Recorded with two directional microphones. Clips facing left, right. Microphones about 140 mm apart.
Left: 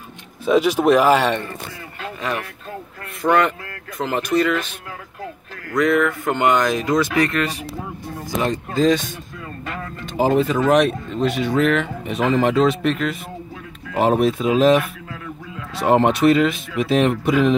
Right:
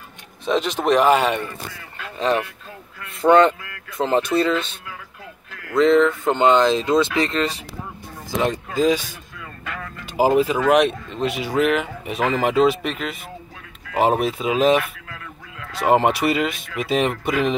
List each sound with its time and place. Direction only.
0.5 s speech: 10° left (ahead or behind)
2.1 s speech: 30° right (ahead or behind)
8.7 s a man's voice: 10° right (ahead or behind)
10.0 s speech: 5° right (ahead or behind)